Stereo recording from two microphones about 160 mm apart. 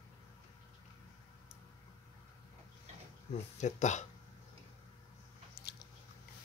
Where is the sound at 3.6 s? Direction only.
45° left (ahead or behind).